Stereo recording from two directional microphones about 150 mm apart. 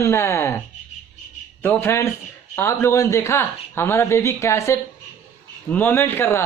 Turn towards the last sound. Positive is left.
turn(degrees=15)  # may be behind; listen again after turning